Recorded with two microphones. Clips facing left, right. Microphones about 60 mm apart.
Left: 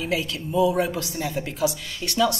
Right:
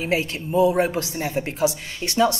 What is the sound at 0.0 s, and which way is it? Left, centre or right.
A woman's voice, right.